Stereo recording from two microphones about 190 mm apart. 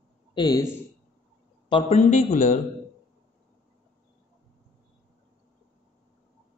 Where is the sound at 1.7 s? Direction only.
30° left (ahead or behind).